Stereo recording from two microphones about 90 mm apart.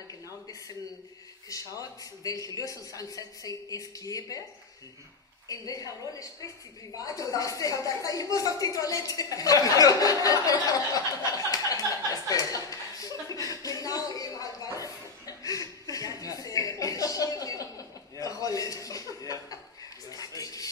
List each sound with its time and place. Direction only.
1.5 s a man's voice: 40° left (ahead or behind)
5.5 s a man's voice: 40° left (ahead or behind)
7.1 s a sound: 40° left (ahead or behind)